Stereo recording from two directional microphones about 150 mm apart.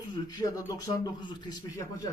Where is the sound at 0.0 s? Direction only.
30° left (ahead or behind).